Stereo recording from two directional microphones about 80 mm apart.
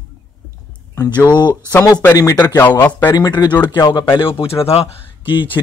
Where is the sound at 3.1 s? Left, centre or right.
Left.